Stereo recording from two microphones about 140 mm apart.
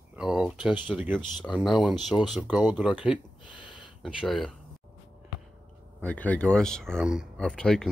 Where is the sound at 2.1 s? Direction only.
25° left (ahead or behind).